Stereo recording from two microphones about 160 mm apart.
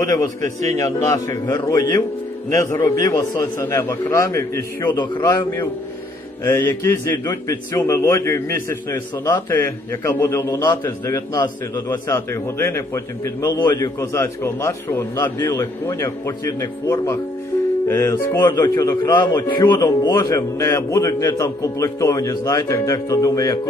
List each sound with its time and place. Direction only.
0.0 s a man's voice: 20° left (ahead or behind)
4.8 s a man's voice: 30° left (ahead or behind)
13.9 s a man's voice: 15° left (ahead or behind)
18.4 s a man's voice: 25° left (ahead or behind)